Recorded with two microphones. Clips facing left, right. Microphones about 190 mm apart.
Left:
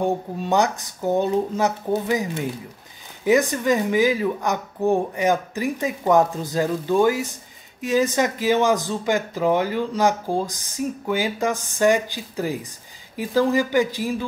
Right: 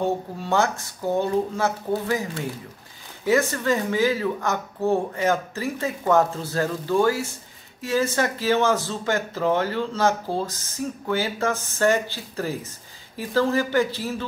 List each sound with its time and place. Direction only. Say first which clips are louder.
0.0 s speech: left 2 dB; 15° left (ahead or behind)